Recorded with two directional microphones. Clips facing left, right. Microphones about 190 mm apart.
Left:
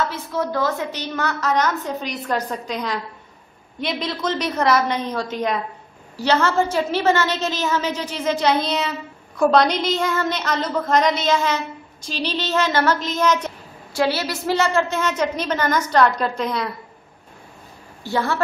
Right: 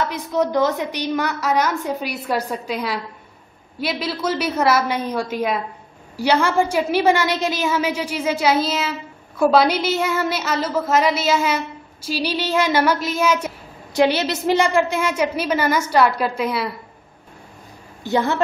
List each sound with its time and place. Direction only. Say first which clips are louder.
0.1 s a woman's voice: right 4 dB; 15° right (ahead or behind)
13.9 s a woman's voice: right 4 dB; 20° right (ahead or behind)
18.0 s a woman's voice: right 3 dB; 20° right (ahead or behind)